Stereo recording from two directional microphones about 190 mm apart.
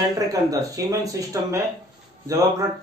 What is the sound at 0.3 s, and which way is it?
Speech, 20° right (ahead or behind).